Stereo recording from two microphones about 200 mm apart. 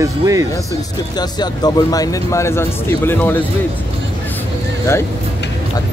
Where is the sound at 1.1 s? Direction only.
20° left (ahead or behind).